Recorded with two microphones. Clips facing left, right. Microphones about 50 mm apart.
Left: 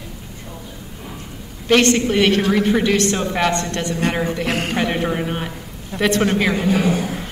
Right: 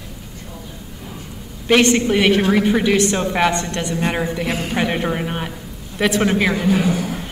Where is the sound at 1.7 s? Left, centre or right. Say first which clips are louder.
Right 1 dB; centre.